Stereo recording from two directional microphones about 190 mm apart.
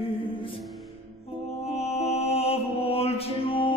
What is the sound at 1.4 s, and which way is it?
Mantra, 35° left (ahead or behind).